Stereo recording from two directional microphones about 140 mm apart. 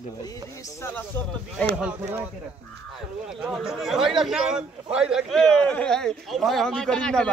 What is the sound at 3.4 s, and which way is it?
A man's voice, 5° right (ahead or behind).